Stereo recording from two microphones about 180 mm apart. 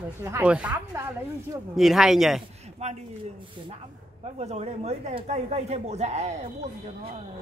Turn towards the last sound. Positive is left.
turn(degrees=-40)  # may be behind; listen again after turning